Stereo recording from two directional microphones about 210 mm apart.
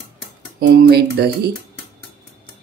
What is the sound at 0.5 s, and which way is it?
Speech, 45° right (ahead or behind).